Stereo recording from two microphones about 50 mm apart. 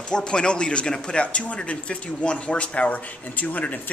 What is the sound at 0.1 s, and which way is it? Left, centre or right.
A man's voice, centre.